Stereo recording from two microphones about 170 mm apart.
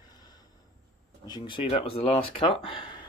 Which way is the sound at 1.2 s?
25° left (ahead or behind).